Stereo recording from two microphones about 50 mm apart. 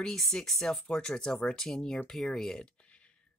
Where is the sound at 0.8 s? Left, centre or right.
Centre.